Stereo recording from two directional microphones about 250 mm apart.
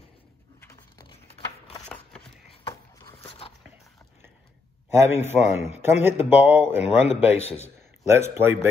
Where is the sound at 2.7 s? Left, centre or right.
Centre.